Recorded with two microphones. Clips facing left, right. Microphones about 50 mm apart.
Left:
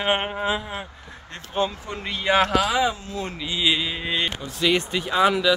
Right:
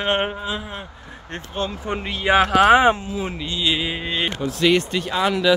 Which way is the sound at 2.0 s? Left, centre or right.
Centre.